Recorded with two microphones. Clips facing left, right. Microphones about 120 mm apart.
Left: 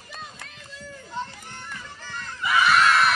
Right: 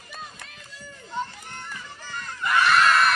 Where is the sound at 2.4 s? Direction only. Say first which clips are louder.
Even; 5° left (ahead or behind).